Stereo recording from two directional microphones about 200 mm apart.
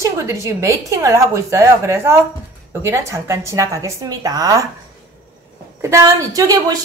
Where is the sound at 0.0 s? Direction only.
15° right (ahead or behind).